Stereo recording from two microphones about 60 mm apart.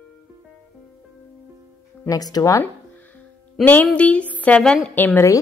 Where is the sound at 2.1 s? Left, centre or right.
Left.